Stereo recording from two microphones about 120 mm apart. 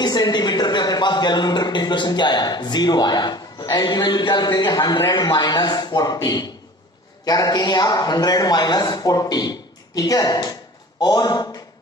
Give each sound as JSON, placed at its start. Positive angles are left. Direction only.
{"t": 0.0, "sound": "a man's voice", "side_deg": 35}